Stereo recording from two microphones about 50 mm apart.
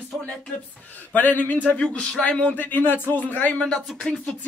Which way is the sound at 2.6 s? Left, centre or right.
Left.